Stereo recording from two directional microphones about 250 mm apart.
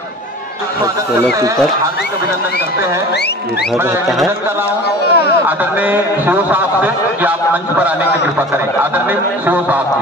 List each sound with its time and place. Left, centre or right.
5.1 s speech: left
5.9 s a man's voice: centre